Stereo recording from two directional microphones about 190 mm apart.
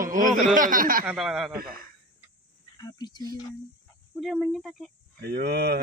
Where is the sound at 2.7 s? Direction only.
20° left (ahead or behind).